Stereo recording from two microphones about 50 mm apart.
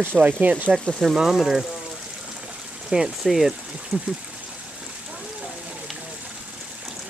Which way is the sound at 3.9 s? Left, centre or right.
Right.